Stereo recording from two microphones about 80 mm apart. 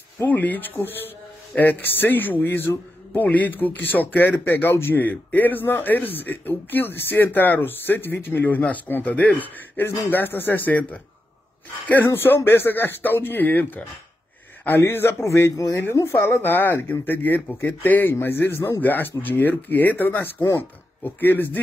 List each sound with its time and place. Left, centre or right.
0.2 s speech: left
12.1 s speech: left